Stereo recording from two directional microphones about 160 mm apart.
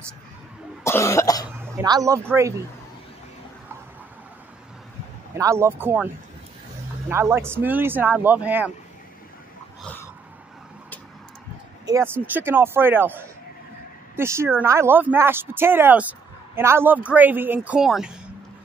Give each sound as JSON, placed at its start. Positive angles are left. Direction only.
{"t": 0.8, "sound": "cough", "side_deg": 15}
{"t": 1.5, "sound": "a sound", "side_deg": -15}
{"t": 1.9, "sound": "speech", "side_deg": -20}
{"t": 5.3, "sound": "speech", "side_deg": -20}
{"t": 7.1, "sound": "speech", "side_deg": -15}
{"t": 9.8, "sound": "a sound", "side_deg": 10}
{"t": 11.8, "sound": "speech", "side_deg": -15}